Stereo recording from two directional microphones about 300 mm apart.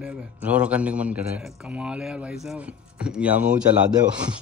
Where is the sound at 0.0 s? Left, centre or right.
Centre.